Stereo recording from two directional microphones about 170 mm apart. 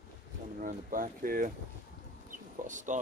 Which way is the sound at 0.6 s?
50° right (ahead or behind).